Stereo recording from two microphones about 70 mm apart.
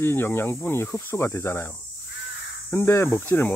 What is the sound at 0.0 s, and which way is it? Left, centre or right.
Speech, left.